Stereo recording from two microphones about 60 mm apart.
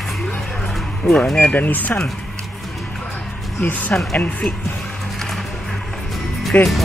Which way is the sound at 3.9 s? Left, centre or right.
Left.